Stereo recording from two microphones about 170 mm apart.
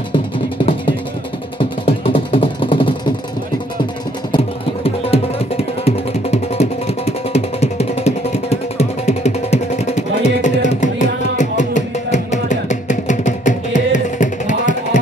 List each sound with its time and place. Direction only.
1.6 s music: 35° left (ahead or behind)
4.3 s music: 35° left (ahead or behind)